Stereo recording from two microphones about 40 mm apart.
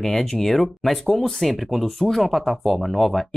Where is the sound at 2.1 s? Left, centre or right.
Centre.